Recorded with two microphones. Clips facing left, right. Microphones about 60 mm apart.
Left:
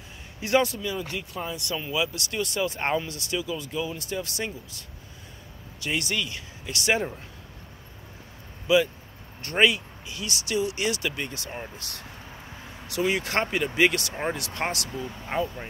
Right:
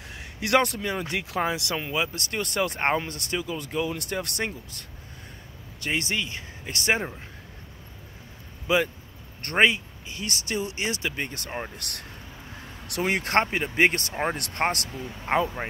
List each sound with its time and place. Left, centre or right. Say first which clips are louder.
0.4 s speech: right 1 dB; right
1.3 s speech: right 7 dB; right
1.9 s speech: left 3 dB; right
5.9 s speech: right 1 dB; right
8.6 s speech: left 2 dB; right
11.2 s speech: right 2 dB; right
11.7 s speech: right 1 dB; right
14.9 s speech: left 2 dB; centre
15.2 s speech: right 5 dB; right